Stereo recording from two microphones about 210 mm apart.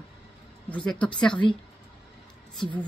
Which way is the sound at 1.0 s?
5° left (ahead or behind).